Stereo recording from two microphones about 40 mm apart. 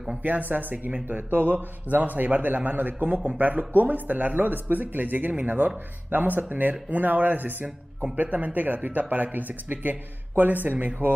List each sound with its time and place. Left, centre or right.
0.2 s speech: right